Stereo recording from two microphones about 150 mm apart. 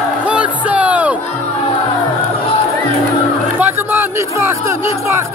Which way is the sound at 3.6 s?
15° right (ahead or behind).